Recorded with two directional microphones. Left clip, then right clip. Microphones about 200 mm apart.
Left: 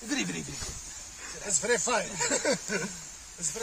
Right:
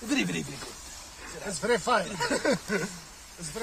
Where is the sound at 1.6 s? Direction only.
40° left (ahead or behind).